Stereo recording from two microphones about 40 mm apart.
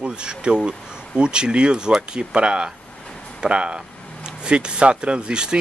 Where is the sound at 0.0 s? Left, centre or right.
Right.